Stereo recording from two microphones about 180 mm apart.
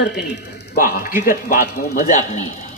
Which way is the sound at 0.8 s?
50° left (ahead or behind).